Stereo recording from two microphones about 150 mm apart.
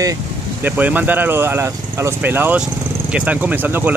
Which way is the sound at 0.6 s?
10° right (ahead or behind).